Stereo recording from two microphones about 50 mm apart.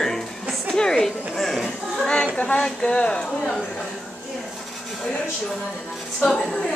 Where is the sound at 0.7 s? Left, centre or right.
Centre.